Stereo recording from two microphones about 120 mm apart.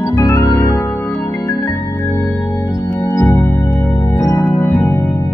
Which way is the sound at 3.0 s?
20° left (ahead or behind).